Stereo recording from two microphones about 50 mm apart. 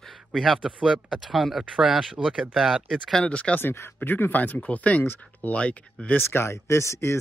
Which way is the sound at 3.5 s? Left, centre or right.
Left.